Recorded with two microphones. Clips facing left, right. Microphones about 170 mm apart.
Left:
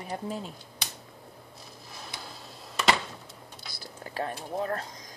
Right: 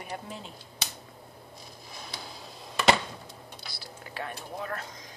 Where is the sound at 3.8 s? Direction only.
40° left (ahead or behind).